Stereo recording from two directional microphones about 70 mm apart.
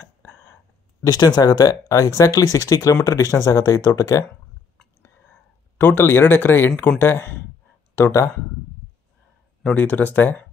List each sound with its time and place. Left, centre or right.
0.2 s a sound: left
1.0 s speech: left
5.8 s speech: left
8.0 s speech: left
9.8 s speech: left